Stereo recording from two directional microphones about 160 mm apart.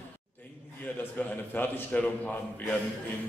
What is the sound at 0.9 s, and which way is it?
A man's voice, 10° left (ahead or behind).